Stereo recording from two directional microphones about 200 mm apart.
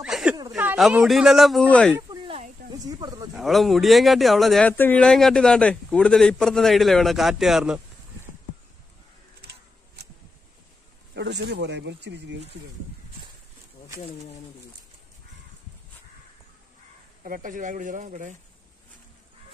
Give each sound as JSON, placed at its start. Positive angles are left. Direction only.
{"t": 0.0, "sound": "a sound", "side_deg": -5}
{"t": 0.5, "sound": "speech", "side_deg": -5}
{"t": 2.0, "sound": "a sound", "side_deg": -25}
{"t": 3.3, "sound": "speech", "side_deg": 0}
{"t": 11.1, "sound": "speech", "side_deg": -55}
{"t": 17.2, "sound": "speech", "side_deg": -40}